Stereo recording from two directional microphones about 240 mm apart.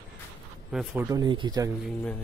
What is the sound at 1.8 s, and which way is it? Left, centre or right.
Speech, centre.